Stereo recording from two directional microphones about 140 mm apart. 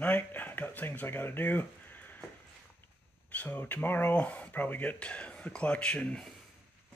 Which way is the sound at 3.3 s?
10° left (ahead or behind).